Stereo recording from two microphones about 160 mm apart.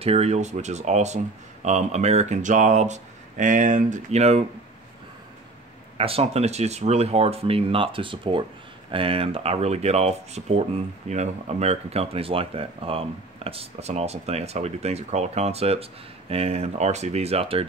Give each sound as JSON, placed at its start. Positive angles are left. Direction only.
{"t": 0.0, "sound": "speech", "side_deg": -40}
{"t": 5.9, "sound": "speech", "side_deg": -35}